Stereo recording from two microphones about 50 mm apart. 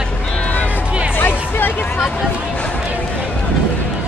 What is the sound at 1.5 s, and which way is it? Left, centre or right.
Vehicle, left.